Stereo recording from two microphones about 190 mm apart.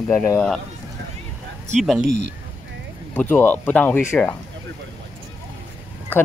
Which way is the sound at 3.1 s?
10° left (ahead or behind).